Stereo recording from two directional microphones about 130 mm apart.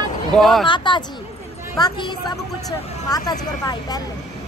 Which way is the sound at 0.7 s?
35° left (ahead or behind).